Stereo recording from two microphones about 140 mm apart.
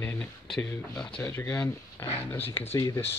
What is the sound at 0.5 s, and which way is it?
Speech, 5° left (ahead or behind).